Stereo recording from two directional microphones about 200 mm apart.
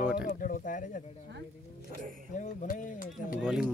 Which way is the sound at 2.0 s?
40° right (ahead or behind).